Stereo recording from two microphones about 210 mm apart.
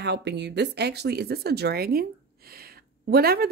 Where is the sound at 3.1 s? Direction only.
50° right (ahead or behind).